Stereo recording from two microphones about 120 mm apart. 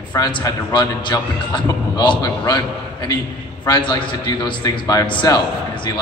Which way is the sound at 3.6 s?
35° left (ahead or behind).